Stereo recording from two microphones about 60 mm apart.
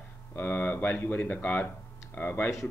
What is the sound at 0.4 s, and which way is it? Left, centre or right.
Speech, left.